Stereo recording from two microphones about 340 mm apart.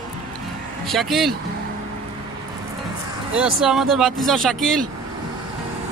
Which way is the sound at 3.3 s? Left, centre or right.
Centre.